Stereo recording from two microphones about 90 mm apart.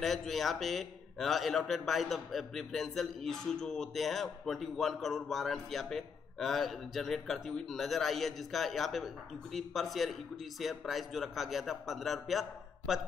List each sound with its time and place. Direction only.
0.0 s a man's voice: centre (ahead or behind)